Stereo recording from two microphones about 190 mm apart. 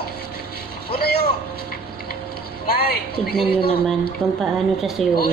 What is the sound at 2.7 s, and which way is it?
Speech, 55° left (ahead or behind).